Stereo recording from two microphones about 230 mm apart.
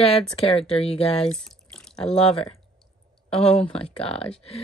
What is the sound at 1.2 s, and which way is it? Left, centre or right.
Drip, centre.